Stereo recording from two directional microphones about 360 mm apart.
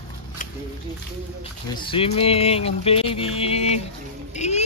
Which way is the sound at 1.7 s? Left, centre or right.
Centre.